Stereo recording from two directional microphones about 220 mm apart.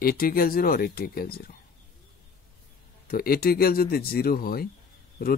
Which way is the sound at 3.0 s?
45° left (ahead or behind).